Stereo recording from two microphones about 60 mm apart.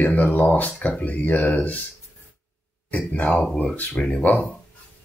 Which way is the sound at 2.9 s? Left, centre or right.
Left.